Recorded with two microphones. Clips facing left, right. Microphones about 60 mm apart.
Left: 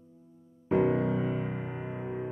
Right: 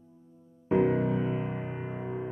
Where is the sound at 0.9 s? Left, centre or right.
Right.